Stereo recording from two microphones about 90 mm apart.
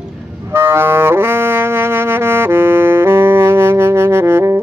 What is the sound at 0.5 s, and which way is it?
Music, 25° right (ahead or behind).